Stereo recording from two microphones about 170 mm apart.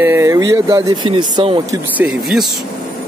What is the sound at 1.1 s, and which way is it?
Speech, 30° right (ahead or behind).